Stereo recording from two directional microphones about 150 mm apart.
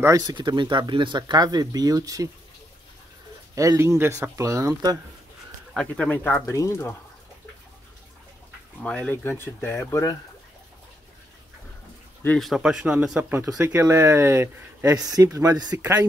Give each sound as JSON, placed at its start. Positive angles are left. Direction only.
{"t": 0.0, "sound": "speech", "side_deg": -25}
{"t": 3.5, "sound": "speech", "side_deg": -20}
{"t": 5.8, "sound": "speech", "side_deg": 10}
{"t": 8.8, "sound": "speech", "side_deg": 10}
{"t": 12.4, "sound": "speech", "side_deg": 0}